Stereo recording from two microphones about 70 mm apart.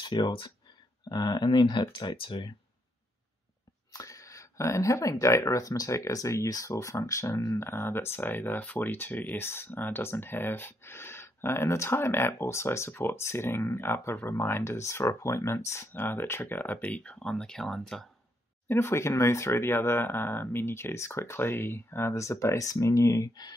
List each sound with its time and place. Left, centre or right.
0.0 s speech: left
1.0 s speech: left
3.9 s speech: left; by 18.0 s centre
18.7 s speech: left